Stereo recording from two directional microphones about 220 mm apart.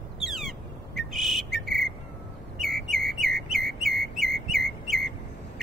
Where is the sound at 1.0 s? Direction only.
Centre (ahead or behind).